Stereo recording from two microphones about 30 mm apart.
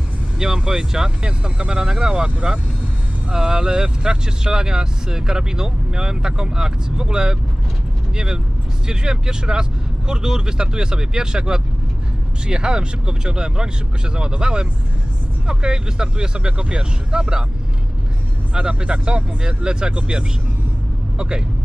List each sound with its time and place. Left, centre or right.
0.7 s speech: right
2.2 s speech: right
3.3 s speech: right
8.8 s speech: right
18.5 s speech: right